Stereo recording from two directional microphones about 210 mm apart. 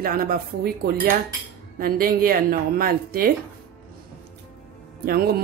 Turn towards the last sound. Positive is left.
turn(degrees=-45)  # may be behind; listen again after turning